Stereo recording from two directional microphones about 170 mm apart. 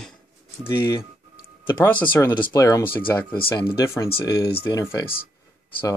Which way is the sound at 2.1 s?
10° left (ahead or behind).